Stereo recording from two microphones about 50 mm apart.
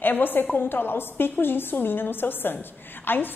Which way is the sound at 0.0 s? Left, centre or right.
Left.